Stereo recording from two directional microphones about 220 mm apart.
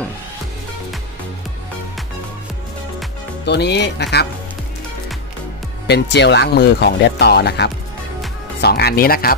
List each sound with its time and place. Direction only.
3.4 s speech: 50° left (ahead or behind)
5.9 s speech: 50° left (ahead or behind)